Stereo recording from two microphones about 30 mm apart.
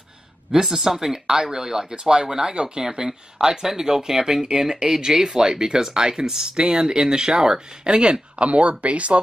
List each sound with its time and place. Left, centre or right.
0.5 s speech: centre
1.2 s speech: right
8.5 s speech: right